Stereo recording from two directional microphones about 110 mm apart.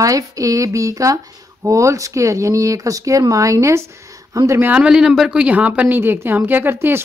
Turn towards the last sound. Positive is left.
turn(degrees=-20)  # may be behind; listen again after turning